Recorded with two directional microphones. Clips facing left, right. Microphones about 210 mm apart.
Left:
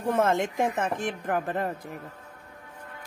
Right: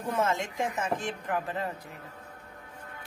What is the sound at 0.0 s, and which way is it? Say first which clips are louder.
Speech: left 5 dB; 55° left (ahead or behind).